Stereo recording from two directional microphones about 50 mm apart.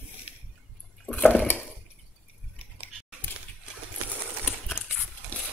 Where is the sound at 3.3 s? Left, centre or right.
Left.